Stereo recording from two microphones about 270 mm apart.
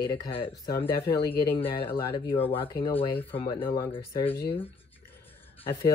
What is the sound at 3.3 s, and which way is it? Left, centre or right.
Speech, centre.